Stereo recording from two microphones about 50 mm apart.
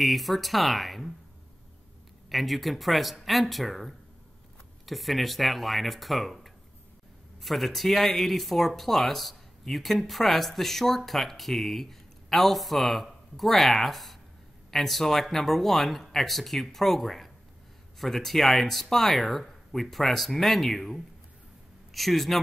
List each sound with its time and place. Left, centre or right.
0.0 s speech: centre
2.2 s speech: centre